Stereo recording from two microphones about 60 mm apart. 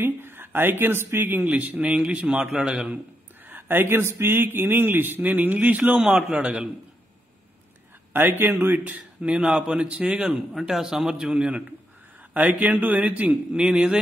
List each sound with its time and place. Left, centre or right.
0.0 s speech: right
1.5 s a man's voice: right
3.4 s a man's voice: right
5.9 s a man's voice: centre
8.1 s a man's voice: right
8.7 s a man's voice: right
10.5 s a man's voice: centre; by 13.4 s right